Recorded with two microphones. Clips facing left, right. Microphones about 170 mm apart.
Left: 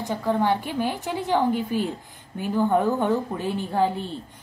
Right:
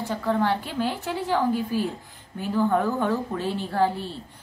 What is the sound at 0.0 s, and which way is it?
A woman's voice, 15° left (ahead or behind).